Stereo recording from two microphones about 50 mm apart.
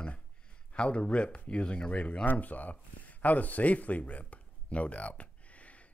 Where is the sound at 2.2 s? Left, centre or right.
Left.